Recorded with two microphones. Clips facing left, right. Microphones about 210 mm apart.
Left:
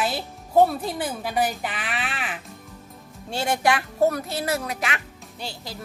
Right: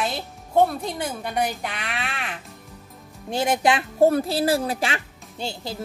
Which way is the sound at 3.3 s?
20° right (ahead or behind).